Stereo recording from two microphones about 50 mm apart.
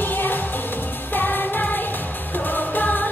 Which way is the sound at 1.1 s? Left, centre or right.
Left.